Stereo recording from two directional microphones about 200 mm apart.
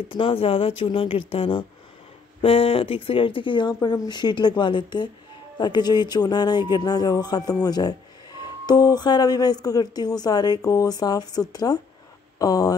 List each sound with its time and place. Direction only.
0.1 s speech: 25° left (ahead or behind)